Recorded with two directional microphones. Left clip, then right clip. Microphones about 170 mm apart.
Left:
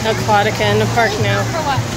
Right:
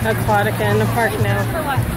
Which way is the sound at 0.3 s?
10° left (ahead or behind).